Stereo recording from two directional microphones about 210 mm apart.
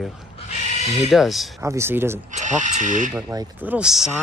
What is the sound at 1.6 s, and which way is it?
Speech, 15° right (ahead or behind).